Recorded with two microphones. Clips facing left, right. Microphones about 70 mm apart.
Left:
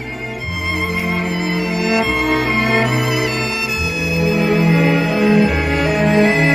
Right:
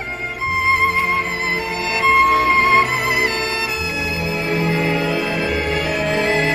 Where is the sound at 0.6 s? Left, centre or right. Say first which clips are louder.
Right 3 dB; right.